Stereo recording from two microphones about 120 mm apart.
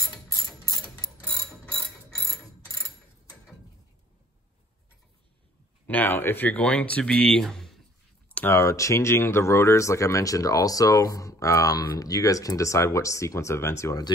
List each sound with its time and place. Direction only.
5.9 s speech: 15° left (ahead or behind)
8.3 s speech: 15° left (ahead or behind)